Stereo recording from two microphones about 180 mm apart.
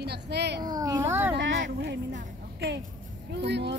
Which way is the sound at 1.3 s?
80° right.